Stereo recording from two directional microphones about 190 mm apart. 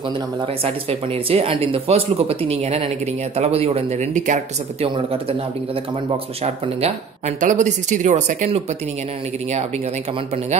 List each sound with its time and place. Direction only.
0.8 s speech: 30° right (ahead or behind)